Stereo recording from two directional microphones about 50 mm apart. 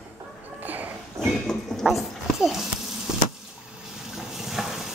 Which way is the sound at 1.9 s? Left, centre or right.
Centre.